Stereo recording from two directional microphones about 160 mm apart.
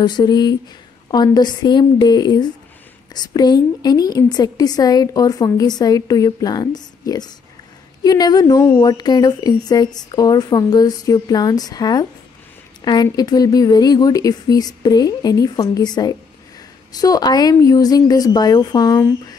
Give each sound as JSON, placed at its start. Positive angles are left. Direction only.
{"t": 0.0, "sound": "a woman's voice", "side_deg": 25}